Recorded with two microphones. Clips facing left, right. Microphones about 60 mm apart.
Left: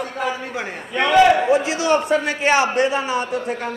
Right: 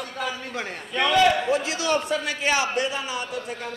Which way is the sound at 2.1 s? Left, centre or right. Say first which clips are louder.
Left 7 dB; left.